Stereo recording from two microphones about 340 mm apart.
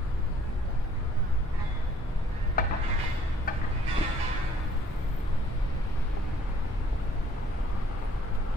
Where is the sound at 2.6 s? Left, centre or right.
Left.